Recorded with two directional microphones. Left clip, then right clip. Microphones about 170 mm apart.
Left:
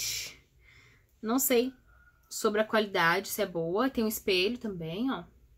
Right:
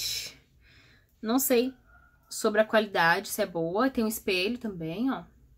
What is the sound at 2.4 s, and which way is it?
Speech, centre (ahead or behind).